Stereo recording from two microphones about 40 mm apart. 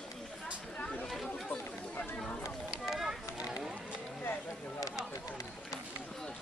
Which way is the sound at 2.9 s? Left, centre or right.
Centre.